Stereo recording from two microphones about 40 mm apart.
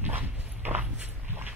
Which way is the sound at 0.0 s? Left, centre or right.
Right.